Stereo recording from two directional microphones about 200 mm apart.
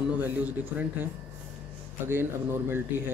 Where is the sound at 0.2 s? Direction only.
10° right (ahead or behind).